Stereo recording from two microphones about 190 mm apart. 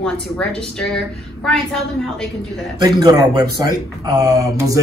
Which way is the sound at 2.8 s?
20° right (ahead or behind).